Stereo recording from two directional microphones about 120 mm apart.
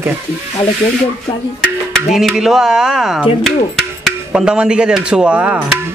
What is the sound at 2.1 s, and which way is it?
Speech, 5° right (ahead or behind).